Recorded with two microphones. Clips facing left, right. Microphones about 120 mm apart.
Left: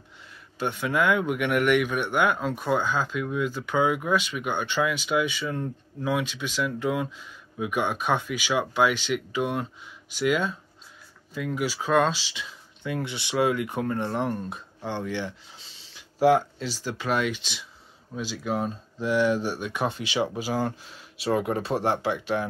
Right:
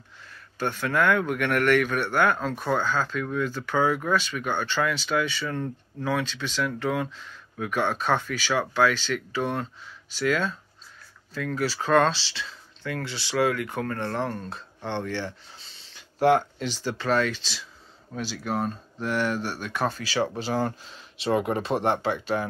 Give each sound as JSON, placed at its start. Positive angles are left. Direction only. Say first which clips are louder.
{"t": 0.6, "sound": "speech", "louder": "even", "side_deg": 15}
{"t": 18.1, "sound": "speech", "louder": "even", "side_deg": 0}
{"t": 20.3, "sound": "speech", "louder": "right 1 dB", "side_deg": 5}